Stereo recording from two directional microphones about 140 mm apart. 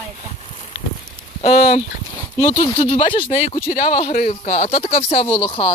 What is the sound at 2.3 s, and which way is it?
Speech, 30° left (ahead or behind).